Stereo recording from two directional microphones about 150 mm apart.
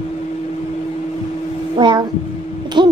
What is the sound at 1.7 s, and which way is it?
Speech, 30° right (ahead or behind).